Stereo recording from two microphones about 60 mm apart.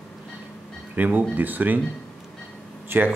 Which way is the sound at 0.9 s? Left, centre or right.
Right.